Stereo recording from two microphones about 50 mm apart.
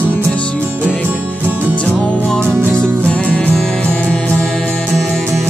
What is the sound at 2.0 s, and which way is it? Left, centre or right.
Music, centre.